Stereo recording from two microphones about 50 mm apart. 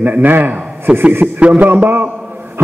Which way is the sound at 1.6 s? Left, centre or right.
Right.